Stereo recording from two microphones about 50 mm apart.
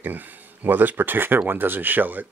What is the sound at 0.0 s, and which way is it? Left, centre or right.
Speech, right.